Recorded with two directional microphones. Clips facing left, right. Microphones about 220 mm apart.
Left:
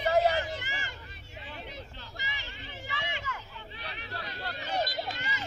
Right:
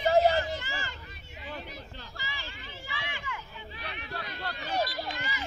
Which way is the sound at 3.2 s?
40° left (ahead or behind).